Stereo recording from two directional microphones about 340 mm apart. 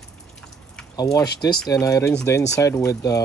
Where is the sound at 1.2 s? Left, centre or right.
Left.